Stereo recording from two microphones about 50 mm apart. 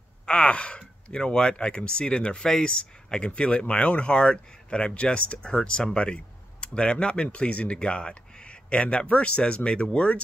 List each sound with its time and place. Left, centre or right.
0.3 s speech: left